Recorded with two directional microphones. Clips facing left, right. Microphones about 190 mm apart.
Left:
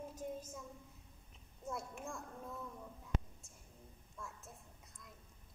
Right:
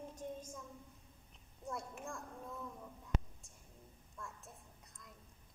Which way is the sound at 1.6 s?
Centre (ahead or behind).